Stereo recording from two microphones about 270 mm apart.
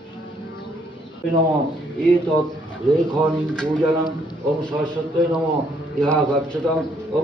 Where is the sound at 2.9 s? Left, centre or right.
Centre.